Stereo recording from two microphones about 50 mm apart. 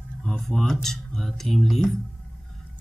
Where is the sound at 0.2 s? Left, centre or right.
Centre.